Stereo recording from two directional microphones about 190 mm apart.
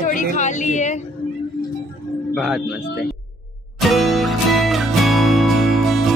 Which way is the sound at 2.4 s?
Centre (ahead or behind).